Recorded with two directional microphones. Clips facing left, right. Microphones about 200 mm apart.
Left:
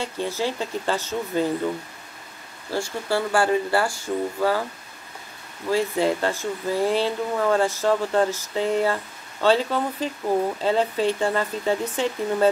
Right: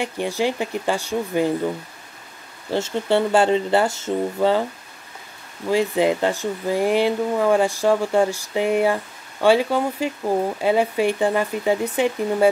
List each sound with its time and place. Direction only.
0.0 s speech: 15° right (ahead or behind)
2.7 s speech: 20° right (ahead or behind)
5.9 s speech: 15° right (ahead or behind)